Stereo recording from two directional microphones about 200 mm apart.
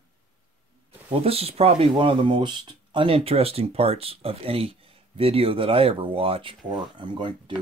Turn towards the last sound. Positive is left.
turn(degrees=-20)  # may be behind; listen again after turning